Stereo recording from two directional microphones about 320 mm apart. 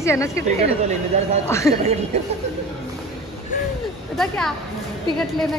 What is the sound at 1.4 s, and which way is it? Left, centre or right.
Speech, centre.